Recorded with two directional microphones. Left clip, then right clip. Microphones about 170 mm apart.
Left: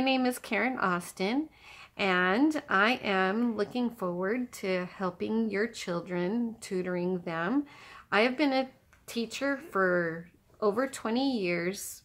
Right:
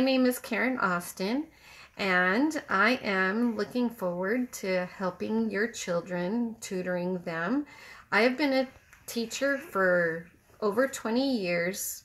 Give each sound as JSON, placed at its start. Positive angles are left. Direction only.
{"t": 0.0, "sound": "speech", "side_deg": 25}